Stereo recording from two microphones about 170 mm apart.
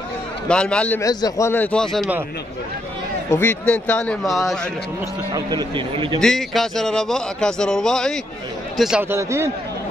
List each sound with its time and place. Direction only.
0.5 s speech: 5° left (ahead or behind)
1.0 s speech: 20° left (ahead or behind); by 2.0 s 5° left (ahead or behind)
3.3 s speech: 15° left (ahead or behind)
5.3 s a man's voice: 25° right (ahead or behind)
6.2 s speech: centre (ahead or behind)
9.1 s a man's voice: 15° right (ahead or behind)